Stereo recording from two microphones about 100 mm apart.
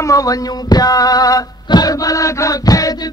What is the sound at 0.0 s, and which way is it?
Music, 35° left (ahead or behind).